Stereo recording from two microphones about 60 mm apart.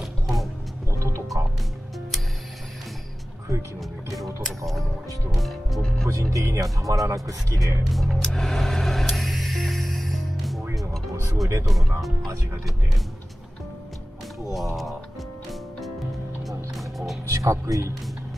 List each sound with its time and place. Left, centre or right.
0.0 s vehicle: centre
0.8 s tick-tock: right
5.4 s speech: centre
5.8 s speech: centre
6.3 s speech: right
7.8 s speech: centre
8.4 s music: centre
11.6 s speech: centre
14.5 s speech: centre
16.4 s music: centre
17.3 s speech: right